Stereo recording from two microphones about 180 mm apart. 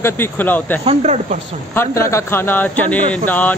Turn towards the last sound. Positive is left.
turn(degrees=10)  # may be behind; listen again after turning